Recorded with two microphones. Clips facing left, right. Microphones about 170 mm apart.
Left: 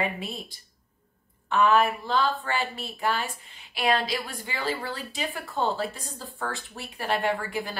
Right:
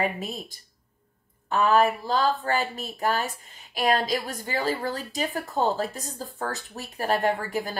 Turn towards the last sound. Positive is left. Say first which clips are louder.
# right 2 dB
turn(degrees=-40)  # may be behind; listen again after turning